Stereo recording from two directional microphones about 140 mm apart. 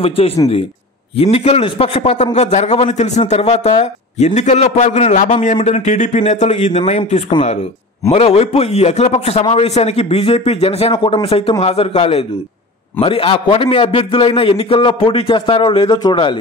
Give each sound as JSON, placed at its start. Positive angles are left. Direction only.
{"t": 0.0, "sound": "a man's voice", "side_deg": 40}